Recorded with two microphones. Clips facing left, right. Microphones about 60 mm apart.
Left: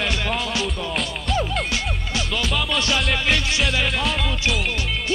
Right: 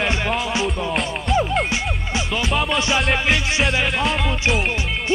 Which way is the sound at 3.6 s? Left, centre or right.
Centre.